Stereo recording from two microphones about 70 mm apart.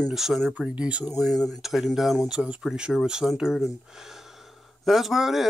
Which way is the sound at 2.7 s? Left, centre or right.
Centre.